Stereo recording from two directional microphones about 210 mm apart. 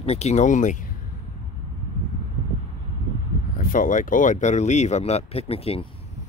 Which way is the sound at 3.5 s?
40° left (ahead or behind).